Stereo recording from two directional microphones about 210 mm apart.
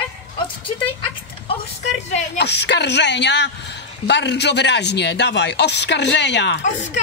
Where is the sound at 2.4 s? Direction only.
55° left (ahead or behind).